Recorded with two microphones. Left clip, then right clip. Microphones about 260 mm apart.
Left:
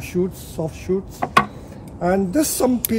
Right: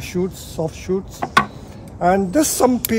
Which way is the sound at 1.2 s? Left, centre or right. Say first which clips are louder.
Even; centre.